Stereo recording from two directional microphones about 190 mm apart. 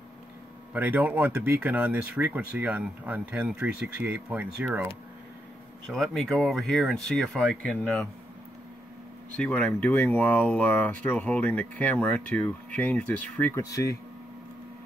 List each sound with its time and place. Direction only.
0.7 s speech: 10° right (ahead or behind)
5.9 s speech: centre (ahead or behind)
9.4 s speech: 10° left (ahead or behind)